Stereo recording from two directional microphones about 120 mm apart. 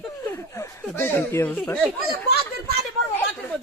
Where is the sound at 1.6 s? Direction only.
5° left (ahead or behind).